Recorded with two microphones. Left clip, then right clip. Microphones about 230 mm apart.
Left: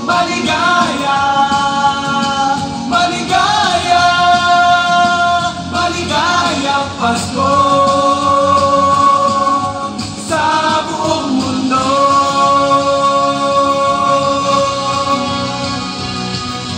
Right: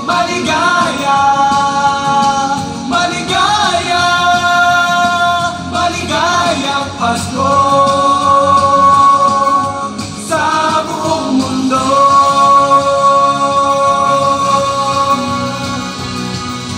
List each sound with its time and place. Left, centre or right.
0.1 s music: right
10.3 s music: right